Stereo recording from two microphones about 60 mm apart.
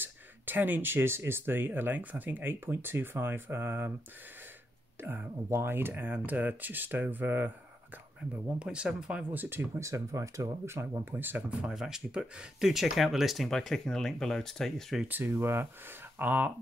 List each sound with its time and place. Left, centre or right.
0.0 s speech: right
5.5 s speech: right
8.5 s speech: centre
9.3 s speech: right
9.8 s speech: right
10.6 s speech: right
11.1 s speech: right
11.6 s speech: centre
15.0 s speech: right